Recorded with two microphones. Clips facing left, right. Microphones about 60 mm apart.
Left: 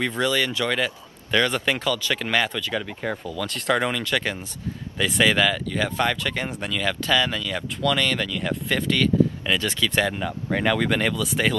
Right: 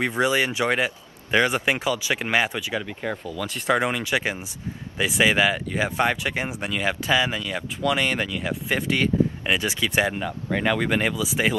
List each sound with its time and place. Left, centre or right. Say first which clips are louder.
0.0 s speech: right 1 dB; centre